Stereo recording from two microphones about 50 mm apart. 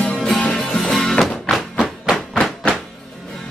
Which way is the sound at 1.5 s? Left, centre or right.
Centre.